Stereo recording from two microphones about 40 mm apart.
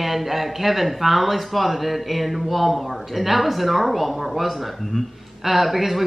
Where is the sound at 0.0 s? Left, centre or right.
Centre.